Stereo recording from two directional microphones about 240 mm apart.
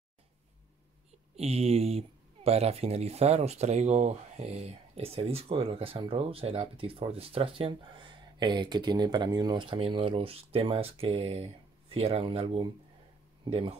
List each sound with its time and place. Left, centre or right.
1.3 s speech: right